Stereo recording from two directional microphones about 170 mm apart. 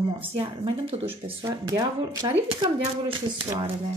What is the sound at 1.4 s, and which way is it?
A woman's voice, 20° right (ahead or behind).